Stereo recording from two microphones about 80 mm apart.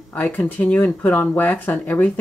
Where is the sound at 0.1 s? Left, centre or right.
Left.